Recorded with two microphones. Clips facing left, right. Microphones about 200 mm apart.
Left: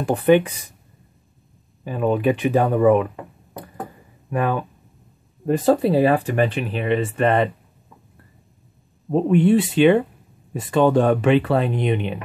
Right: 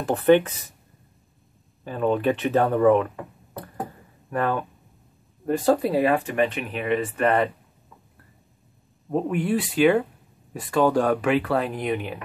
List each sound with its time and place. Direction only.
0.0 s speech: 15° left (ahead or behind)
1.9 s speech: 10° left (ahead or behind)
4.3 s speech: 10° left (ahead or behind)
5.8 s speech: 30° left (ahead or behind)
9.1 s speech: 25° left (ahead or behind)